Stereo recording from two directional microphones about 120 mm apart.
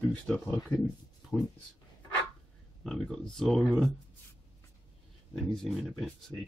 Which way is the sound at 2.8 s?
Centre (ahead or behind).